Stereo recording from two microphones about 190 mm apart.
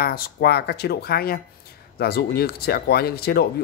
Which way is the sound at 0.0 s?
55° left (ahead or behind).